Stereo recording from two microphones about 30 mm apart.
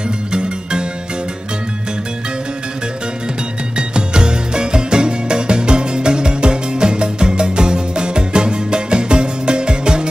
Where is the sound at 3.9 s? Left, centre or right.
Right.